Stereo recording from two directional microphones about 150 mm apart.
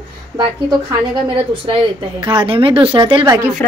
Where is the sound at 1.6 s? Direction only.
35° right (ahead or behind).